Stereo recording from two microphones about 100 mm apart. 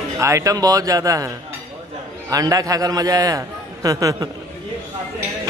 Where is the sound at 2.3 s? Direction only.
35° right (ahead or behind).